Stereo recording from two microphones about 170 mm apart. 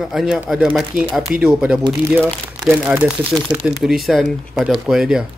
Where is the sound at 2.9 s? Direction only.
10° right (ahead or behind).